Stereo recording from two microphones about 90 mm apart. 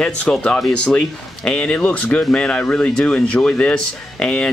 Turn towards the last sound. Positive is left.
turn(degrees=10)  # may be behind; listen again after turning